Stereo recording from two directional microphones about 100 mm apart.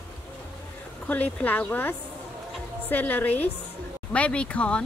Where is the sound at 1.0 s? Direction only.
15° left (ahead or behind).